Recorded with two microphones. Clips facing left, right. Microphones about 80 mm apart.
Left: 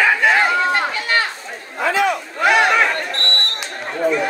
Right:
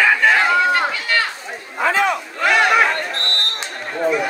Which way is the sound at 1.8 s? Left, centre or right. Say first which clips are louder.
Even; right.